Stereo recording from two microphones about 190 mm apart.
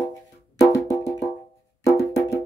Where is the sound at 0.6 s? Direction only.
15° left (ahead or behind).